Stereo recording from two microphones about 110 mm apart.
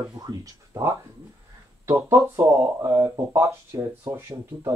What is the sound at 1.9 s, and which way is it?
Speech, 25° right (ahead or behind).